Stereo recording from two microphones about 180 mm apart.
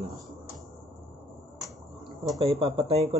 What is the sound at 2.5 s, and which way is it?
Speech, 35° right (ahead or behind).